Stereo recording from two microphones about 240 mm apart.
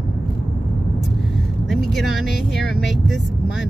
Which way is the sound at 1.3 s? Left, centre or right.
Centre.